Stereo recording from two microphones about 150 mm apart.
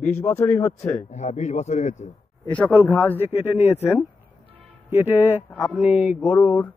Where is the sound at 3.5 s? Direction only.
45° left (ahead or behind).